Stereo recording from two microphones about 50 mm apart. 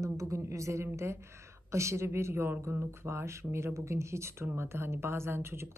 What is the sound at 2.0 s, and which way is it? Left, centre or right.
A woman's voice, right.